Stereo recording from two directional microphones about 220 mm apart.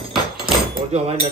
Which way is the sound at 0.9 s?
30° right (ahead or behind).